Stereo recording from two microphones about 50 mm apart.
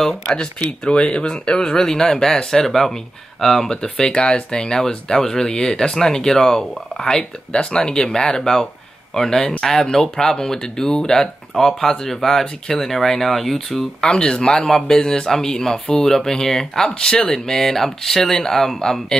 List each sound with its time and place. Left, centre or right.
0.0 s speech: centre
14.0 s speech: centre